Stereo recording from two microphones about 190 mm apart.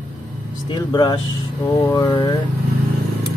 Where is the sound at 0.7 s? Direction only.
25° left (ahead or behind).